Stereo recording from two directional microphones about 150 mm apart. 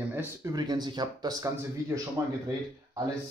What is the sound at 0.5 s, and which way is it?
Speech, 25° right (ahead or behind).